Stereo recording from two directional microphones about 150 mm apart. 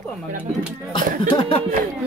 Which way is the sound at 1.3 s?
40° left (ahead or behind).